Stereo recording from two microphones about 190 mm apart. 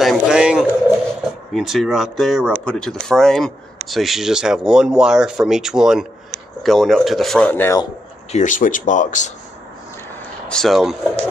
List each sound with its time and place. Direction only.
0.0 s a sound: centre (ahead or behind)
1.5 s speech: centre (ahead or behind)
8.3 s speech: 40° left (ahead or behind)
10.5 s speech: centre (ahead or behind)